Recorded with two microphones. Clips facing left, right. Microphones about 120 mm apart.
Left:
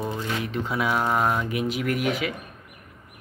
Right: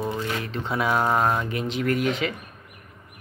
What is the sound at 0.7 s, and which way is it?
Speech, centre (ahead or behind).